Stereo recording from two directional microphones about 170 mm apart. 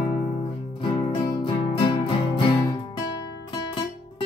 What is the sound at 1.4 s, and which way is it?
Music, 30° left (ahead or behind).